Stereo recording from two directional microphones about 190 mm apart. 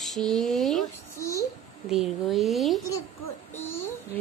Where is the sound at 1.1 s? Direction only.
15° left (ahead or behind).